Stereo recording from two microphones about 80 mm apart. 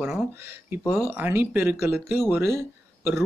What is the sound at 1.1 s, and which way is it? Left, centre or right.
Speech, right.